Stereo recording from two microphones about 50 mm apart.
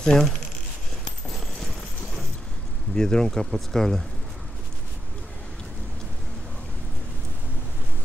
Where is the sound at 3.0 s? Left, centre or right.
Centre.